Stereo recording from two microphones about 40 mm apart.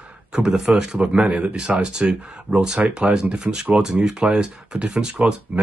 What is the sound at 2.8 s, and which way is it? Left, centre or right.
Speech, right.